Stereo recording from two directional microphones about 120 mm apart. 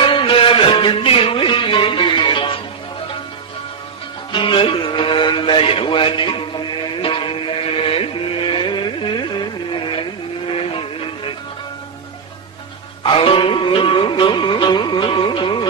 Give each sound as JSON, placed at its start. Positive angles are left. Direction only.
{"t": 0.0, "sound": "music", "side_deg": 45}
{"t": 4.3, "sound": "music", "side_deg": 45}
{"t": 13.0, "sound": "music", "side_deg": 45}